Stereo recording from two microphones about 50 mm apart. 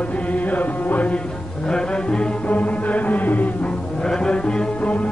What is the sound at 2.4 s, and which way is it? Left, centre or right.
Music, left.